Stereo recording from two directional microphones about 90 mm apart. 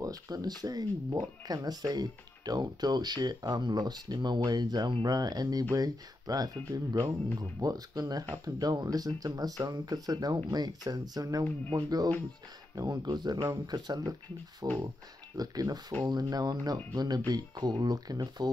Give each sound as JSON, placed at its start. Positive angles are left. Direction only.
{"t": 0.0, "sound": "speech", "side_deg": -45}